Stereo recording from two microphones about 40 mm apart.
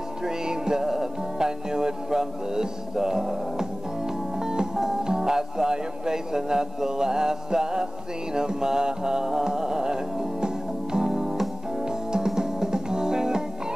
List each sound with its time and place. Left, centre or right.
0.2 s music: centre